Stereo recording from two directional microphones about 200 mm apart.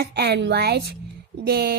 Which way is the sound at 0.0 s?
55° right (ahead or behind).